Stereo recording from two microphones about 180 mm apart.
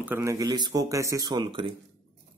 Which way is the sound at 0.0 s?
15° right (ahead or behind).